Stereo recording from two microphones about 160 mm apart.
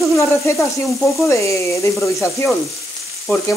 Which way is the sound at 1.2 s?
20° left (ahead or behind).